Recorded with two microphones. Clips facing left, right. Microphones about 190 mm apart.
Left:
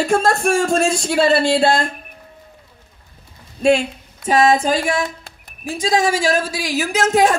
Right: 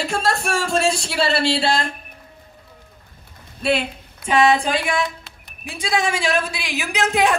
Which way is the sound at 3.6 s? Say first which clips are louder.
Left 6 dB; 45° left (ahead or behind).